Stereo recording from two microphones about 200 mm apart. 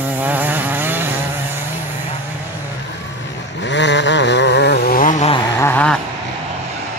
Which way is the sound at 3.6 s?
60° left (ahead or behind).